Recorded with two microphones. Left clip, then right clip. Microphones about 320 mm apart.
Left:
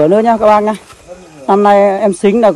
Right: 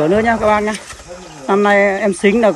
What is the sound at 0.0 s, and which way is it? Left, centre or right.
Speech, centre.